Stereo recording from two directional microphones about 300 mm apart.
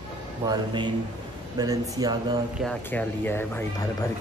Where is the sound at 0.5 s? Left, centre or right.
Centre.